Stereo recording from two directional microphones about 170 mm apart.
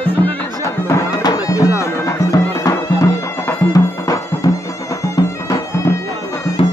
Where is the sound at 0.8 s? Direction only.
20° left (ahead or behind).